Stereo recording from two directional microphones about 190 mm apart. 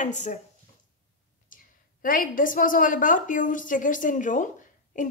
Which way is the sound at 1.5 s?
45° left (ahead or behind).